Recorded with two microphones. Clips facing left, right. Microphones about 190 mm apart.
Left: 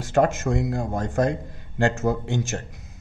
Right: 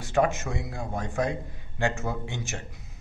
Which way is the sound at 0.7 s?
45° left (ahead or behind).